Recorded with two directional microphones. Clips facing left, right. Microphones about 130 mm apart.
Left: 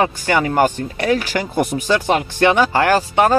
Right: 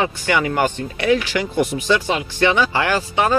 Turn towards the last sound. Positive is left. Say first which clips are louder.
# left 4 dB
turn(degrees=45)  # may be behind; listen again after turning